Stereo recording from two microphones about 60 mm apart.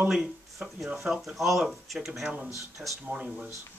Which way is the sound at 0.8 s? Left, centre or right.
Centre.